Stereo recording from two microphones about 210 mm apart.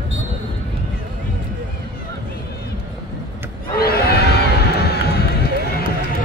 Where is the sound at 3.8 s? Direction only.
50° left (ahead or behind).